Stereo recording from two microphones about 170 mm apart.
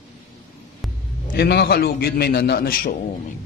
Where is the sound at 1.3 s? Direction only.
70° left (ahead or behind).